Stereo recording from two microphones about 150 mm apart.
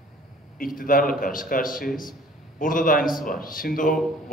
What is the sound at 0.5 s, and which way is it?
A man's voice, 65° left (ahead or behind).